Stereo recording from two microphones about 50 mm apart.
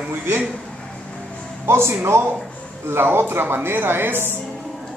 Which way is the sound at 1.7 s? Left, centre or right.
Right.